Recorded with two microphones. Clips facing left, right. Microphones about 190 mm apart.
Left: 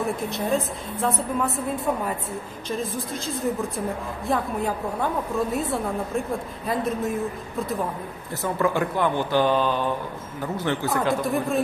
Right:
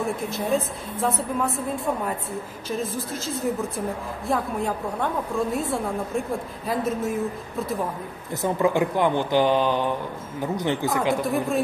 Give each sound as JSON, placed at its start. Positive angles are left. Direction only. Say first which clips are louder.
{"t": 0.5, "sound": "a woman's voice", "louder": "right 1 dB", "side_deg": 0}
{"t": 2.8, "sound": "a woman's voice", "louder": "right 1 dB", "side_deg": 0}
{"t": 4.3, "sound": "a woman's voice", "louder": "even", "side_deg": 0}
{"t": 8.3, "sound": "speech", "louder": "right 2 dB", "side_deg": -20}
{"t": 11.1, "sound": "a woman's voice", "louder": "even", "side_deg": 0}